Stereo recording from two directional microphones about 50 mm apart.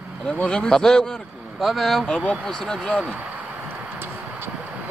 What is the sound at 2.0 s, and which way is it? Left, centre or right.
Speech, left.